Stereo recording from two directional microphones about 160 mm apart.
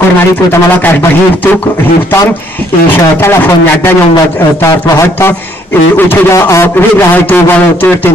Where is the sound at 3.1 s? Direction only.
15° left (ahead or behind).